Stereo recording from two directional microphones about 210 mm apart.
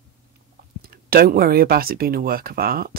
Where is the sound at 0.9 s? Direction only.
45° right (ahead or behind).